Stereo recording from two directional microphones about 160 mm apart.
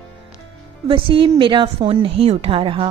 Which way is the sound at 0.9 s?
30° right (ahead or behind).